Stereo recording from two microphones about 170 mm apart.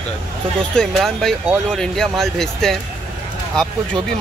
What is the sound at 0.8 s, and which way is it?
Speech, centre (ahead or behind).